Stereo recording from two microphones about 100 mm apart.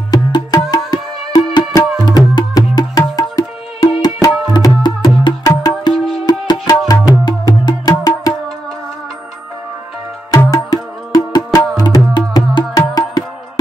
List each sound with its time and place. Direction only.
0.1 s music: 40° left (ahead or behind)
10.5 s music: 40° left (ahead or behind)